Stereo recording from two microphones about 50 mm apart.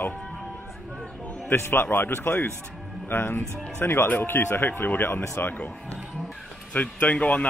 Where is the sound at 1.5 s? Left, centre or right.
Left.